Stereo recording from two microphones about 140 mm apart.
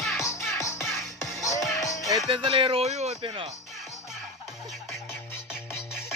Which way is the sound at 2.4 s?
40° right (ahead or behind).